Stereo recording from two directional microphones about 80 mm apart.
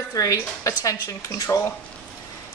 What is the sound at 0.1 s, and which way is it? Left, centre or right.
A woman's voice, left.